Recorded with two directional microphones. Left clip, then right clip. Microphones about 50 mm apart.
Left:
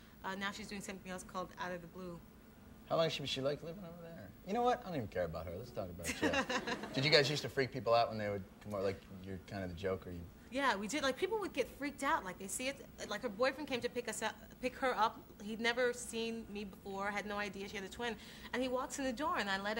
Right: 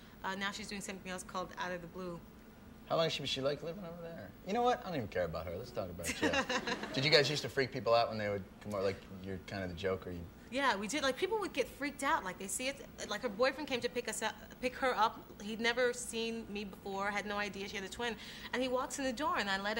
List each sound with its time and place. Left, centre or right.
0.2 s a man's voice: right